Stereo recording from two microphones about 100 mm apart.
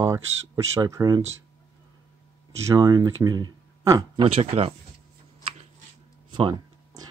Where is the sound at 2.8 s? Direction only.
40° right (ahead or behind).